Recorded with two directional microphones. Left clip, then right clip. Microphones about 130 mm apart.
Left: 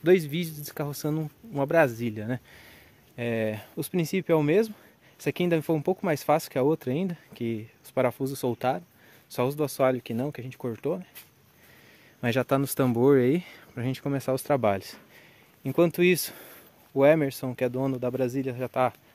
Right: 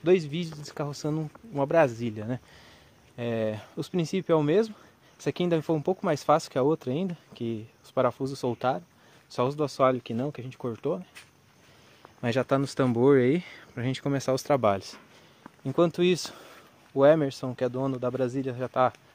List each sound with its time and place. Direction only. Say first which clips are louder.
0.0 s speech: left 2 dB; 40° left (ahead or behind); by 18.9 s 15° left (ahead or behind)